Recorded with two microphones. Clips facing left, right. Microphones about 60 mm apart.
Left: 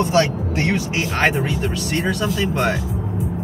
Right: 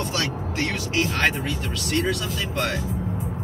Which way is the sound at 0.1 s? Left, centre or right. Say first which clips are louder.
Left 9 dB; left.